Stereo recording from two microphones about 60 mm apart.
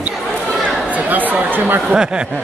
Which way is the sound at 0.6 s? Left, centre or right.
Right.